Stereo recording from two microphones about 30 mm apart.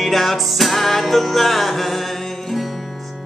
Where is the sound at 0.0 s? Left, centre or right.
Centre.